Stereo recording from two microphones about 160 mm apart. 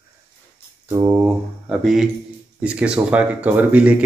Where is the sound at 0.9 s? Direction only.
20° right (ahead or behind).